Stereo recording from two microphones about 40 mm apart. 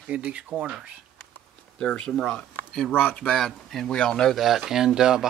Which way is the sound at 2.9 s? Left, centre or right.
Left.